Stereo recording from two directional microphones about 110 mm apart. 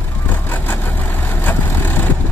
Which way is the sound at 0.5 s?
15° left (ahead or behind).